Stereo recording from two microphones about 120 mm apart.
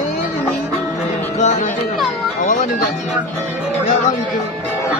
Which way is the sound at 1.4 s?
80° left.